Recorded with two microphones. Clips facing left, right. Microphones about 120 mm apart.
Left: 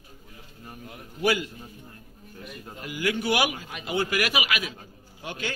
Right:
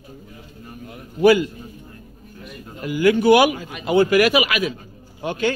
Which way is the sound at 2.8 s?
45° right (ahead or behind).